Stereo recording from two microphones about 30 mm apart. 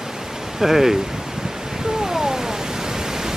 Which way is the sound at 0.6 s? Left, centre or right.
Centre.